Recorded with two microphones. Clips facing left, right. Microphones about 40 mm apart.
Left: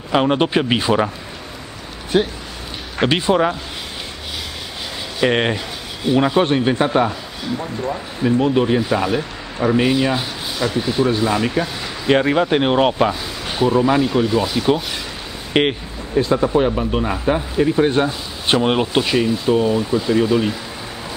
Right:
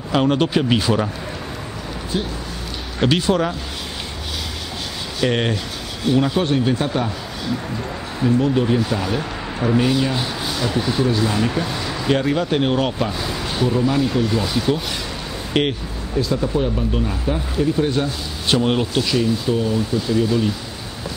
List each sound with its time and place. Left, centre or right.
0.1 s speech: centre
2.1 s speech: left
3.0 s speech: left
5.2 s speech: left
7.8 s speech: centre
8.4 s speech: left
9.8 s speech: left
10.7 s speech: centre
11.1 s speech: centre
11.5 s a sound: centre
12.1 s speech: left
14.3 s speech: centre
15.5 s speech: left